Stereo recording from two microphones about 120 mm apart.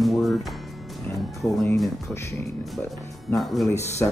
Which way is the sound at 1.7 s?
Centre (ahead or behind).